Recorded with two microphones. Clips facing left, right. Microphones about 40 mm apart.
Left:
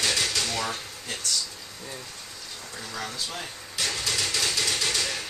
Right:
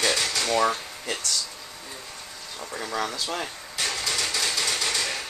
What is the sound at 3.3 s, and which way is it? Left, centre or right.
Speech, right.